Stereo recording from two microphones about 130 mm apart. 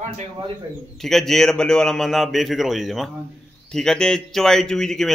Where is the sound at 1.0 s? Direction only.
Centre (ahead or behind).